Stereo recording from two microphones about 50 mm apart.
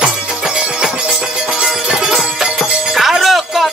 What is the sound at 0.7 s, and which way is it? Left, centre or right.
Music, centre.